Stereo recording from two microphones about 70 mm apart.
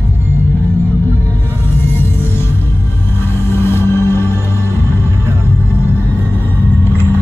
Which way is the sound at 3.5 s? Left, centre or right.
Left.